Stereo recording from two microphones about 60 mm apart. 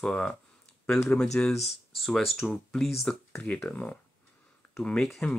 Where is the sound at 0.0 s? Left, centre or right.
Centre.